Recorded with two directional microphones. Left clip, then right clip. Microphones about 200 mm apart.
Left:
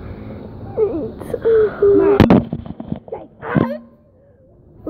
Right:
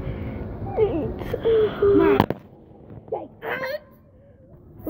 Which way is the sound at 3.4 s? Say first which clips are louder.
Left 10 dB; 55° right (ahead or behind).